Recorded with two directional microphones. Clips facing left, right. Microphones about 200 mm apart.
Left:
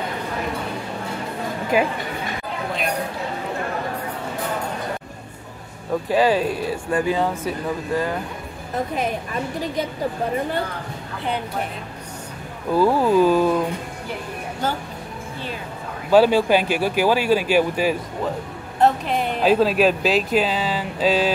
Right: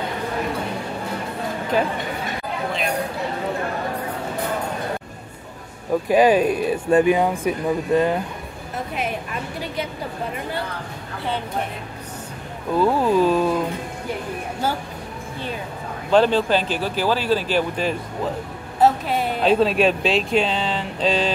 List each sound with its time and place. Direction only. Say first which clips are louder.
1.7 s speech: left 2 dB; 10° left (ahead or behind)
6.0 s speech: right 3 dB; 15° right (ahead or behind)
12.7 s speech: left 1 dB; centre (ahead or behind)
16.1 s speech: left 2 dB; 10° left (ahead or behind)
18.8 s speech: right 1 dB; 5° right (ahead or behind)